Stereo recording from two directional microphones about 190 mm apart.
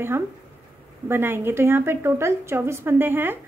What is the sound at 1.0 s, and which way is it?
A woman's voice, 10° right (ahead or behind).